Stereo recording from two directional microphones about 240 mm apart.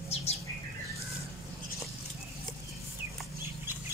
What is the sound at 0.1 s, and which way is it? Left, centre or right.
Bird, left.